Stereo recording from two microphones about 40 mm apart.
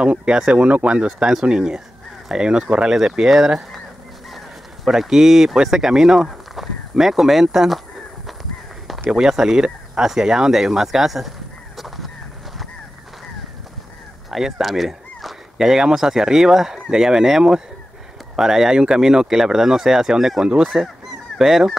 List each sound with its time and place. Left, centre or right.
0.2 s speech: right
0.6 s speech: right
0.9 s speech: right; by 3.6 s centre
4.8 s speech: centre
8.3 s a sound: centre
9.1 s speech: centre
14.3 s speech: centre
20.4 s speech: right
21.4 s speech: centre